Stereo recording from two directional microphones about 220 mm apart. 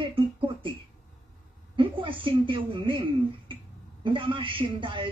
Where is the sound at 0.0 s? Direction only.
20° right (ahead or behind).